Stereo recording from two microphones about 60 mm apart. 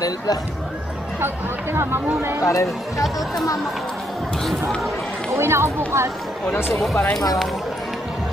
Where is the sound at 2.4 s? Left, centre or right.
Left.